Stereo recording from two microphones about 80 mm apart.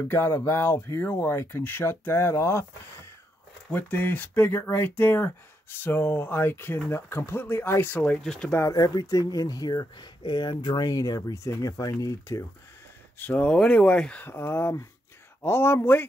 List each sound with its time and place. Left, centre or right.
0.1 s speech: left
3.7 s speech: left
8.2 s speech: centre
8.5 s speech: left
8.7 s speech: left
13.2 s speech: centre
14.2 s speech: left